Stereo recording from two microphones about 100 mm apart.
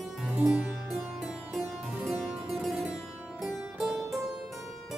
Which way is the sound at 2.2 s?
Centre (ahead or behind).